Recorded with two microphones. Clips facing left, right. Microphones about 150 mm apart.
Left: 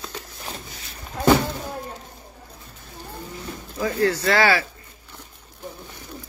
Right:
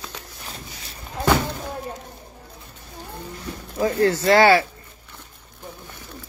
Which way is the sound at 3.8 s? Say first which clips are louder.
Right 2 dB; 25° right (ahead or behind).